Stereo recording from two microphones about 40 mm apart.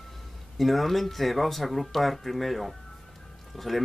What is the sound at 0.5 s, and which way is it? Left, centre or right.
Speech, centre.